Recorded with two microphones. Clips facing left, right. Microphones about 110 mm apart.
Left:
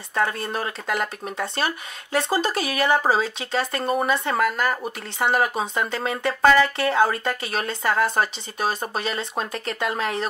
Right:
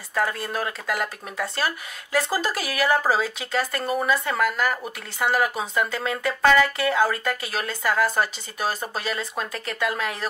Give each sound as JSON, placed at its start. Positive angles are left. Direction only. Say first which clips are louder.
{"t": 0.1, "sound": "speech", "louder": "left 1 dB", "side_deg": 30}